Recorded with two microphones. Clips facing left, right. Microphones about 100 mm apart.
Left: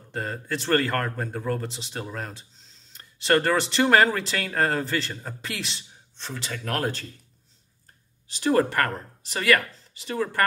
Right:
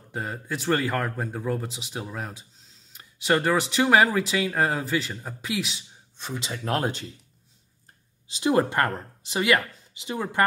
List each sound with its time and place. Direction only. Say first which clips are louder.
0.1 s speech: left 1 dB; 10° right (ahead or behind)
8.3 s speech: even; 20° right (ahead or behind)